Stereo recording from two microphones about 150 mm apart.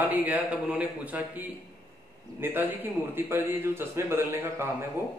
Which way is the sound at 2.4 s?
15° right (ahead or behind).